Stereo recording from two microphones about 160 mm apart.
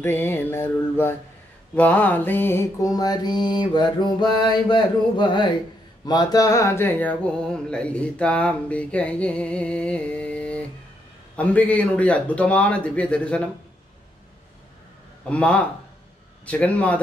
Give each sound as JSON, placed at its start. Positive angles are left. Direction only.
{"t": 0.0, "sound": "music", "side_deg": 15}
{"t": 1.8, "sound": "mantra", "side_deg": 10}
{"t": 6.0, "sound": "music", "side_deg": 25}
{"t": 15.2, "sound": "music", "side_deg": 5}